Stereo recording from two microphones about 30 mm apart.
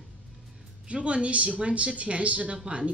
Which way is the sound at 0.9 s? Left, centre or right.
Right.